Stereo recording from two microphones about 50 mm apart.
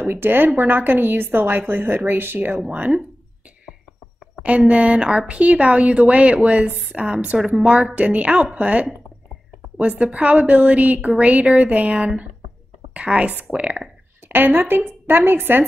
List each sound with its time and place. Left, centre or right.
0.0 s a woman's voice: right
4.4 s a woman's voice: right
7.3 s a woman's voice: centre
14.3 s a woman's voice: right